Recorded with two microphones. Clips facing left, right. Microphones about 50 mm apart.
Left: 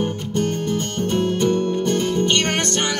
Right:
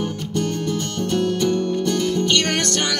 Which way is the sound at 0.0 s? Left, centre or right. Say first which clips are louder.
Left 2 dB; left.